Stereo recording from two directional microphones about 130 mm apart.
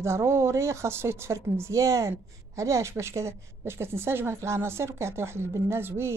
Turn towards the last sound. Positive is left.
turn(degrees=-20)  # may be behind; listen again after turning